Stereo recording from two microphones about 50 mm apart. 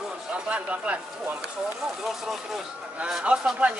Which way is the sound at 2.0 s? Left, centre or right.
Centre.